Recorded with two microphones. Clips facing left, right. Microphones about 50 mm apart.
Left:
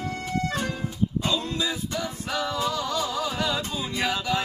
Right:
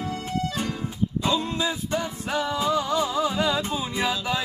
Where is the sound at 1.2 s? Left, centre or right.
Right.